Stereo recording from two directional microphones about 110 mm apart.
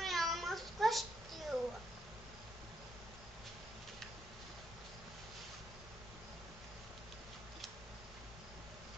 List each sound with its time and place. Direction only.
0.0 s cat: centre (ahead or behind)